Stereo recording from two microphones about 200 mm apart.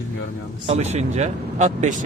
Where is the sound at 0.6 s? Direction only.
30° right (ahead or behind).